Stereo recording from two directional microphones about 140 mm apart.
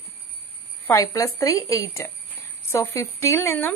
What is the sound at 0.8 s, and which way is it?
A woman's voice, 25° left (ahead or behind).